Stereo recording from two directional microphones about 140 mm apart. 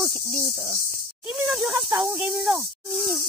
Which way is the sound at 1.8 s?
20° right (ahead or behind).